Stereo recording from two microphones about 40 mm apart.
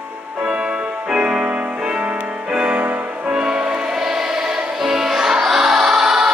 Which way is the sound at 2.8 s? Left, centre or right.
Right.